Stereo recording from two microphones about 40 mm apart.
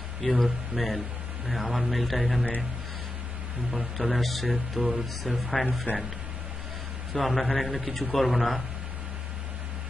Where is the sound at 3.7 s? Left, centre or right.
Centre.